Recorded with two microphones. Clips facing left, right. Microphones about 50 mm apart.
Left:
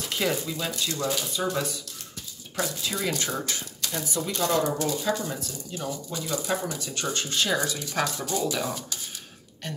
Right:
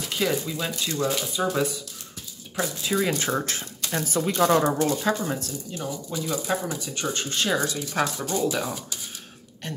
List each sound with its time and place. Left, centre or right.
0.0 s speech: centre
0.7 s speech: centre
3.1 s speech: right
5.7 s speech: centre
7.2 s speech: right
7.4 s speech: centre